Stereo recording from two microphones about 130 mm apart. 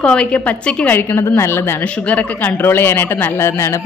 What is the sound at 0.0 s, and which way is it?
Speech, 10° left (ahead or behind).